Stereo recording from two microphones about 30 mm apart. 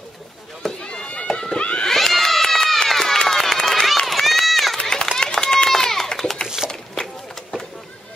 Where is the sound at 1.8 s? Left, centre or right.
Centre.